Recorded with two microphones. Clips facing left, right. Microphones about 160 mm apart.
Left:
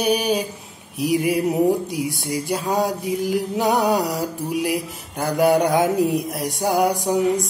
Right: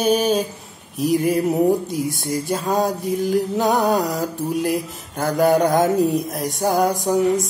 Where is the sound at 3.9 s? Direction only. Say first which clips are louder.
Right 1 dB; 45° right (ahead or behind).